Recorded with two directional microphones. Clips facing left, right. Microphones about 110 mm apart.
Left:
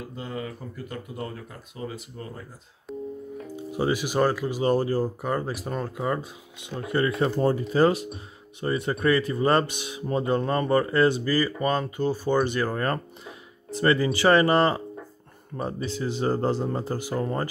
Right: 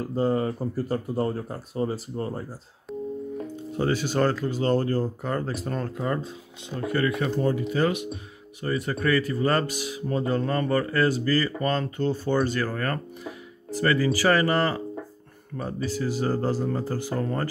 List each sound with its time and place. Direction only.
0.0 s speech: 40° right (ahead or behind)
2.9 s busy signal: centre (ahead or behind)
3.7 s speech: 10° left (ahead or behind)
6.9 s speech: 30° left (ahead or behind)